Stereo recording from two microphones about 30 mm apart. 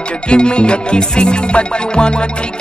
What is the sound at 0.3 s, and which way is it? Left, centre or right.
Music, left.